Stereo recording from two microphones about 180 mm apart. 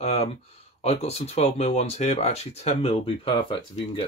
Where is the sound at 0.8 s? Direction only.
35° left (ahead or behind).